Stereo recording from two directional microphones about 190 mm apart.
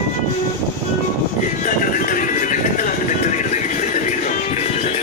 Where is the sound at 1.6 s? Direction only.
45° left (ahead or behind).